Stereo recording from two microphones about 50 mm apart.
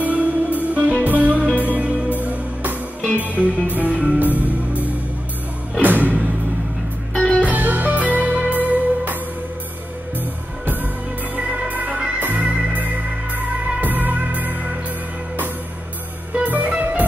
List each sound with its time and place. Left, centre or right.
0.0 s music: right
5.8 s music: right
7.3 s music: right
10.6 s music: right
16.4 s music: right